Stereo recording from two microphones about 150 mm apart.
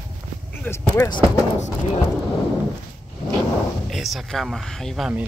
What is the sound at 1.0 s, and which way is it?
Speech, 30° left (ahead or behind).